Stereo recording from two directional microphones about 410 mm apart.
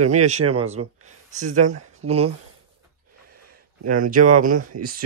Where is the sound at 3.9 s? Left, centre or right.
Centre.